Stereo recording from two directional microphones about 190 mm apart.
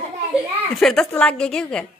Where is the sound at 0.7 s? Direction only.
Centre (ahead or behind).